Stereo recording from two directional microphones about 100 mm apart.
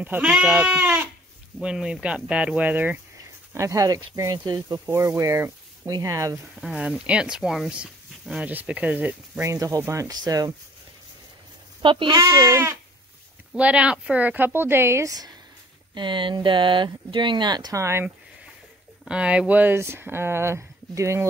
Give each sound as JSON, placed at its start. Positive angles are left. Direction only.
{"t": 0.0, "sound": "speech", "side_deg": -15}
{"t": 3.5, "sound": "speech", "side_deg": -35}
{"t": 4.7, "sound": "speech", "side_deg": -25}
{"t": 6.4, "sound": "speech", "side_deg": -5}
{"t": 9.4, "sound": "speech", "side_deg": -35}
{"t": 11.8, "sound": "speech", "side_deg": -55}
{"t": 12.1, "sound": "speech", "side_deg": -35}
{"t": 13.6, "sound": "speech", "side_deg": -10}
{"t": 15.9, "sound": "speech", "side_deg": -50}
{"t": 19.0, "sound": "speech", "side_deg": -10}